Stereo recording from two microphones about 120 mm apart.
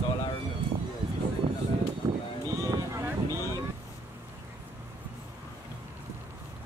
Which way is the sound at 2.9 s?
25° right (ahead or behind).